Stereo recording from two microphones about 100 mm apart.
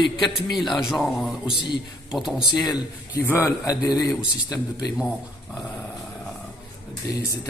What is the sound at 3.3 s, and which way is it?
Speech, 30° left (ahead or behind).